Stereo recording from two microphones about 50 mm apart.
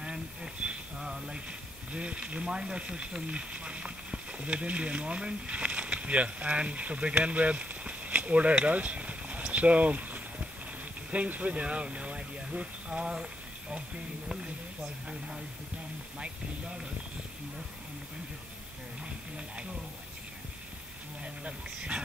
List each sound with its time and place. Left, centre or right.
0.0 s a sound: centre
1.9 s speech: right
15.0 s speech: centre
21.2 s speech: right